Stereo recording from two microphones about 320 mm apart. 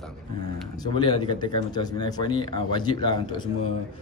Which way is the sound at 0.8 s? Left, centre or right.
Centre.